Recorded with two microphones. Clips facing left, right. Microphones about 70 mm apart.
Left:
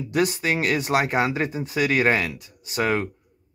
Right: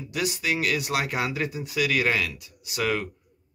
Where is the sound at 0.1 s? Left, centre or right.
Left.